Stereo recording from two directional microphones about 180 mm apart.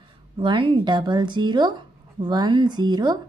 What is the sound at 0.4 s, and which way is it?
A woman's voice, 25° right (ahead or behind).